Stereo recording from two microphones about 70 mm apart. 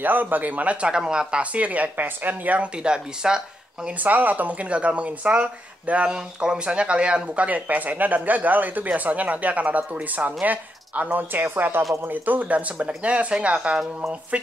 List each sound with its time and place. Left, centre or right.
0.0 s speech: right; by 3.9 s centre
4.0 s speech: right